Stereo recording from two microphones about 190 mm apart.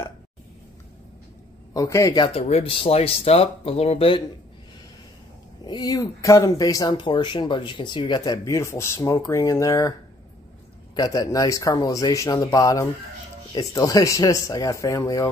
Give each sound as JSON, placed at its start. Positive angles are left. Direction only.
{"t": 1.7, "sound": "speech", "side_deg": 15}
{"t": 5.7, "sound": "speech", "side_deg": 20}
{"t": 11.0, "sound": "speech", "side_deg": 20}